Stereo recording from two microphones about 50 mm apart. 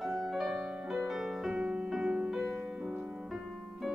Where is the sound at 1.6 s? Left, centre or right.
Right.